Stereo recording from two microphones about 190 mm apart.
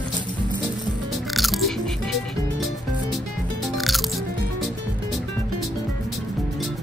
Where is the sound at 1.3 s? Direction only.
Centre (ahead or behind).